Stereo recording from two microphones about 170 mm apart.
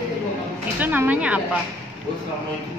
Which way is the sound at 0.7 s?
10° right (ahead or behind).